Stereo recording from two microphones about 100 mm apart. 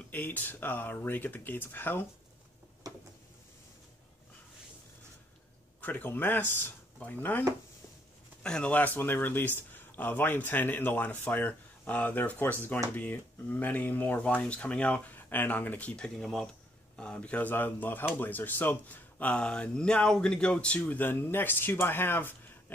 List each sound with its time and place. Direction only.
0.1 s speech: 20° left (ahead or behind)
2.8 s a sound: 40° right (ahead or behind)
5.8 s speech: 20° left (ahead or behind)
8.4 s speech: 10° left (ahead or behind)